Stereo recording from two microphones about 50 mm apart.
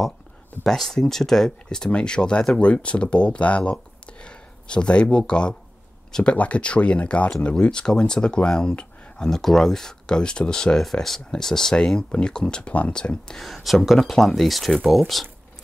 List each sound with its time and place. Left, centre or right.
0.7 s speech: centre
13.4 s speech: centre